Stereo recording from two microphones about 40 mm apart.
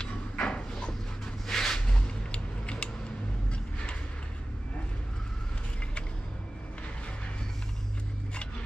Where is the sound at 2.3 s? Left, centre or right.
Left.